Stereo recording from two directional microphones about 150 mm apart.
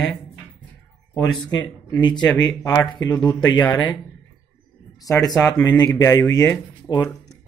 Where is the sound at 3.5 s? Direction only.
15° left (ahead or behind).